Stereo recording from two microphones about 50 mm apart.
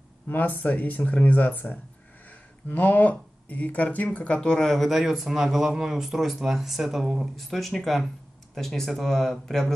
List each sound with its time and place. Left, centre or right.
0.3 s speech: left; by 4.7 s centre
4.7 s a man's voice: centre
7.3 s a man's voice: centre